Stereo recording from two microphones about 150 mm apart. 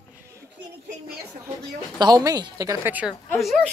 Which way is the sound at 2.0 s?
25° right (ahead or behind).